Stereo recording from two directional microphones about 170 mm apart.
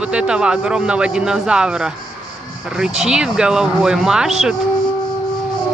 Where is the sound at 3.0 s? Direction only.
5° right (ahead or behind).